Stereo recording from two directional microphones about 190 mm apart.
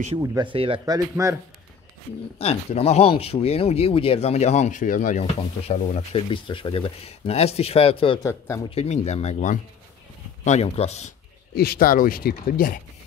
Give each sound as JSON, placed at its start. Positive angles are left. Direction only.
{"t": 0.2, "sound": "speech", "side_deg": -15}
{"t": 0.5, "sound": "speech", "side_deg": -25}
{"t": 2.3, "sound": "speech", "side_deg": 30}
{"t": 11.5, "sound": "speech", "side_deg": 55}